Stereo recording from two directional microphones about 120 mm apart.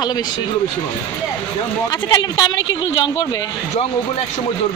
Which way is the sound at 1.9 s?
30° left (ahead or behind).